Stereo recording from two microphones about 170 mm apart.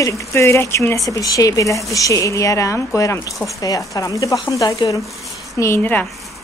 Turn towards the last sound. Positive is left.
turn(degrees=10)  # may be behind; listen again after turning